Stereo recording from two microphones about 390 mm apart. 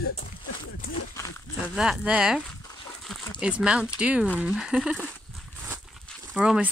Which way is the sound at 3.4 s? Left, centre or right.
Centre.